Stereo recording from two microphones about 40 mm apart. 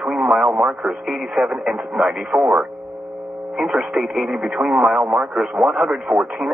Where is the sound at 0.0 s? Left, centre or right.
Centre.